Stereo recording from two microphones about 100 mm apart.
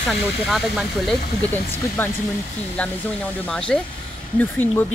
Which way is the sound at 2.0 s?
20° left (ahead or behind).